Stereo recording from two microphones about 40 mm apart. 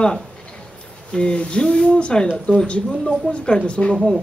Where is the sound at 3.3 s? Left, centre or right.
Left.